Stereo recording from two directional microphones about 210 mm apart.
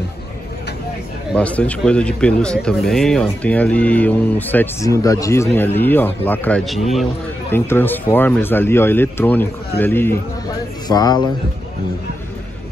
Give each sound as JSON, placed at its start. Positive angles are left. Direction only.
{"t": 1.3, "sound": "a man's voice", "side_deg": 5}